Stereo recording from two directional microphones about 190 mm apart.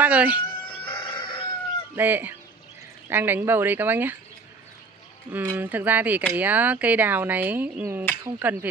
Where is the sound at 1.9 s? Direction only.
10° right (ahead or behind).